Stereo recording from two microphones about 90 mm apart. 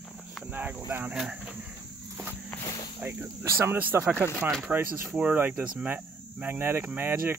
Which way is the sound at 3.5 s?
20° right (ahead or behind).